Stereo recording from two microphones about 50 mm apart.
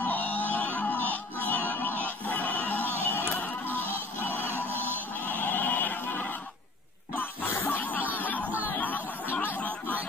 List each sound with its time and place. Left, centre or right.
0.0 s music: left
4.3 s music: right
5.2 s a sound: left
7.6 s a sound: left
8.1 s music: left
9.6 s music: left